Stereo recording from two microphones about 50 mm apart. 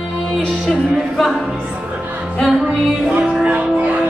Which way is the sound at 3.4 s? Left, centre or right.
Right.